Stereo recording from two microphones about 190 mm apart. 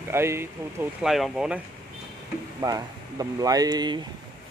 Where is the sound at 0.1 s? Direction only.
15° right (ahead or behind).